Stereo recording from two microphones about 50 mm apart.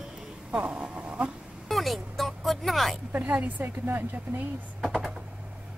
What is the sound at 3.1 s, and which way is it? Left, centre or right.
Speech, right.